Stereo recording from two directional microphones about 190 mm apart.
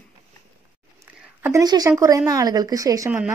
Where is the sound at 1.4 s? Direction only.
15° right (ahead or behind).